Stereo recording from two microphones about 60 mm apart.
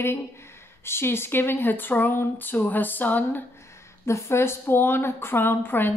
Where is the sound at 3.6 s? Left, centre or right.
Left.